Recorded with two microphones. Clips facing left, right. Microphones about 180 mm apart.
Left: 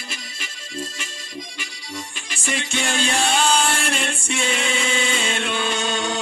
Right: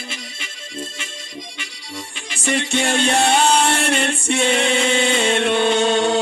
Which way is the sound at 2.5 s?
60° right (ahead or behind).